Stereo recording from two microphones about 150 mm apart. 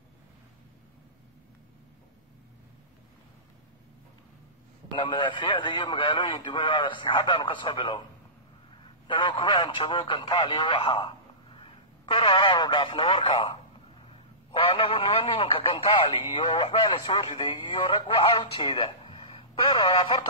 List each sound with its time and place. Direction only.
4.9 s speech: 30° left (ahead or behind)
9.0 s speech: 35° left (ahead or behind)